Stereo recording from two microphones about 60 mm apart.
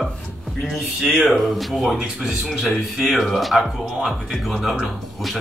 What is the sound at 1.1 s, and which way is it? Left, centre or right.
Speech, centre.